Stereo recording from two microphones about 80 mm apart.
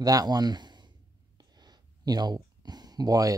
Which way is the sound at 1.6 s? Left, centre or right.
Right.